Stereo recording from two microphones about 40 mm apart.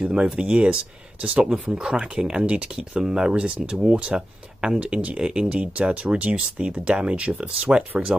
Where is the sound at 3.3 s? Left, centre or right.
Right.